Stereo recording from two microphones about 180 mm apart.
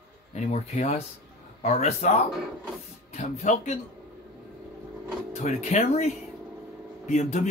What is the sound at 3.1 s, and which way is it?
Speech, 40° left (ahead or behind).